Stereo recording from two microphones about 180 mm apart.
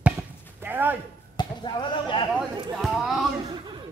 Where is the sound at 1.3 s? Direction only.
25° left (ahead or behind).